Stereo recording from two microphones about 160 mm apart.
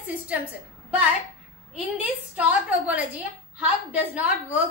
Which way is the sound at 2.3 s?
10° right (ahead or behind).